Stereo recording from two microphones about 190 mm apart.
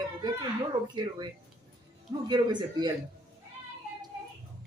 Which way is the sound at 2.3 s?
20° right (ahead or behind).